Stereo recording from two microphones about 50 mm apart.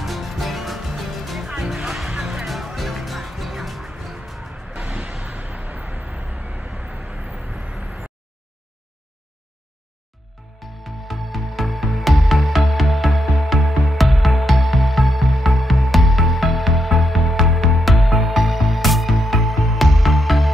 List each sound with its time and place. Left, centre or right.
0.0 s music: centre
1.5 s music: centre
4.7 s vehicle: right
6.6 s vehicle: centre
11.1 s music: centre